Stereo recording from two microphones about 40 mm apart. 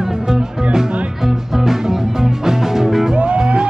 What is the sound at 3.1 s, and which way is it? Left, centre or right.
Music, right.